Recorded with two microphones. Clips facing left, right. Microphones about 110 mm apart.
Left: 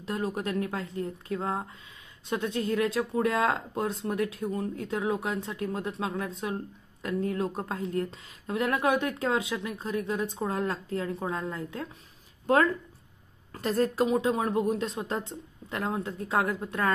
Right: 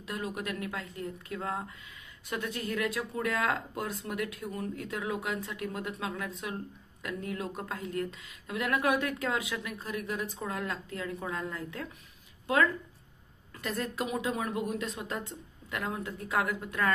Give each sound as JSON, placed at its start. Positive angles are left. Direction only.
{"t": 0.0, "sound": "speech", "side_deg": 30}
{"t": 13.5, "sound": "speech", "side_deg": 35}